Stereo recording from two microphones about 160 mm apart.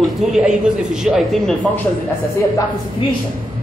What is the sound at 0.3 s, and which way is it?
A man's voice, 5° right (ahead or behind).